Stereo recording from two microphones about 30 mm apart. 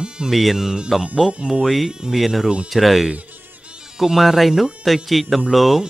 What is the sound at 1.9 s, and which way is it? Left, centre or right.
Speech, right.